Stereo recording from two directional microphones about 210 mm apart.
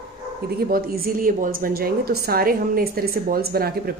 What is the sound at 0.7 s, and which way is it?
A woman's voice, 45° right (ahead or behind).